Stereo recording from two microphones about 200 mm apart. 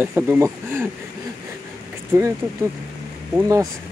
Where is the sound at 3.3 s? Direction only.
15° right (ahead or behind).